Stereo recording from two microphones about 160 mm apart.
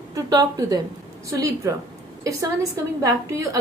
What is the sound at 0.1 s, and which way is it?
A woman's voice, 20° right (ahead or behind).